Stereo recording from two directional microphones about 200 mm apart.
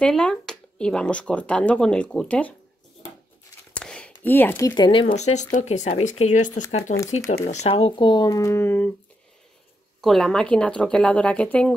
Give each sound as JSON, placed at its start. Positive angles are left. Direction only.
{"t": 0.0, "sound": "speech", "side_deg": 5}
{"t": 3.7, "sound": "a sound", "side_deg": 5}
{"t": 4.2, "sound": "speech", "side_deg": 10}
{"t": 5.0, "sound": "speech", "side_deg": 35}
{"t": 10.0, "sound": "speech", "side_deg": 0}